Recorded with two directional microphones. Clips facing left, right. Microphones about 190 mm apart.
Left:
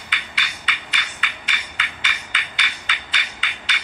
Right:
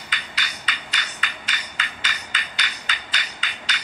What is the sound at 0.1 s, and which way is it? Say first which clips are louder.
Music: left 1 dB; 40° right (ahead or behind).